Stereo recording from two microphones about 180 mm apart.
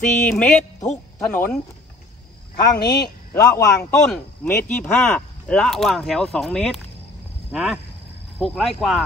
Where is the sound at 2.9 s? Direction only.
20° left (ahead or behind).